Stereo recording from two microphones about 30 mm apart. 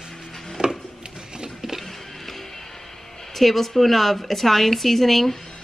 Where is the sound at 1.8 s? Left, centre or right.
Centre.